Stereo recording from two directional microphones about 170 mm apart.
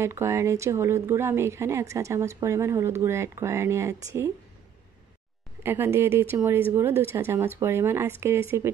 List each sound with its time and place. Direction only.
0.0 s speech: 15° right (ahead or behind)
5.6 s speech: 15° right (ahead or behind)